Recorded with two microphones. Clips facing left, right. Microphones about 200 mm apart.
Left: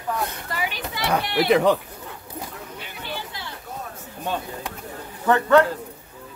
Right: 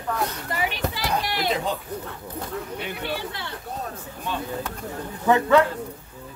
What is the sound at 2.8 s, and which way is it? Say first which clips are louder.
Speech: right 2 dB; 60° right (ahead or behind).